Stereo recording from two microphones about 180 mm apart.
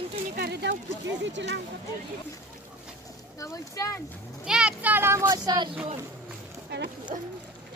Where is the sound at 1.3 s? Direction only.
85° right.